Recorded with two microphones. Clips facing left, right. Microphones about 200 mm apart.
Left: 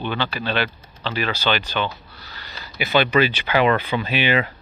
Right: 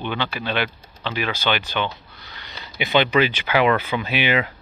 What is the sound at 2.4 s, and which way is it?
Speech, 20° right (ahead or behind).